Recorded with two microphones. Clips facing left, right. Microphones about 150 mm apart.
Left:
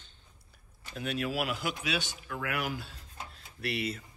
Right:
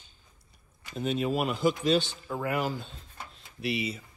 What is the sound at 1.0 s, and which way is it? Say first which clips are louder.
Speech: right 4 dB; 5° left (ahead or behind).